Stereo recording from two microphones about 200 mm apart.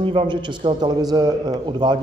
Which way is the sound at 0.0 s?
25° right (ahead or behind).